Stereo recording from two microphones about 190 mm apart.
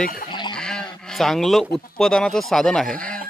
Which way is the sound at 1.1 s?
Centre (ahead or behind).